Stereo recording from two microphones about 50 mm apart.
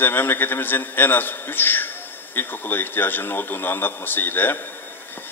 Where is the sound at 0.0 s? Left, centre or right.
Left.